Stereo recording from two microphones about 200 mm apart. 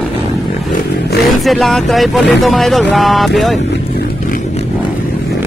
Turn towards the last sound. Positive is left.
turn(degrees=0)  # may be behind; listen again after turning